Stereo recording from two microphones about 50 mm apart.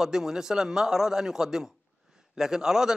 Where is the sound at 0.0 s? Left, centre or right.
Centre.